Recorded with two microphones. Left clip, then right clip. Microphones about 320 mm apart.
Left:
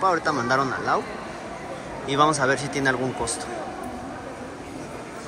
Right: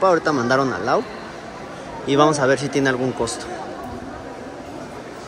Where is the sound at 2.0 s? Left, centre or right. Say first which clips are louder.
Right 4 dB; centre.